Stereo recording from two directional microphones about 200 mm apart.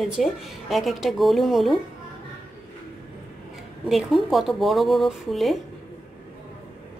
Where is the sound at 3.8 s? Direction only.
Centre (ahead or behind).